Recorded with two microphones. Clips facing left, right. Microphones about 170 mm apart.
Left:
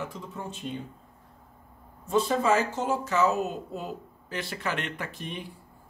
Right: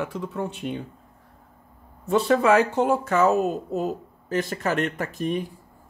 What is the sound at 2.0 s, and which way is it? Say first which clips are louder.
Speech: right 5 dB; 70° right (ahead or behind).